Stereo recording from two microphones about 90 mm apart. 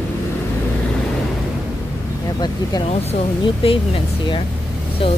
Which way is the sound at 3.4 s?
85° left.